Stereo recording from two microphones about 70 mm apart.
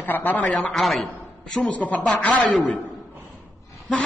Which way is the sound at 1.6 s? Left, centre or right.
Left.